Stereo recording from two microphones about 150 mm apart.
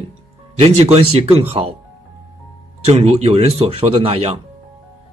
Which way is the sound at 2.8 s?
45° right (ahead or behind).